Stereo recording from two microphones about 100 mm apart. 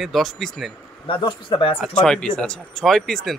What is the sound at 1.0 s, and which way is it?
Speech, 55° left (ahead or behind).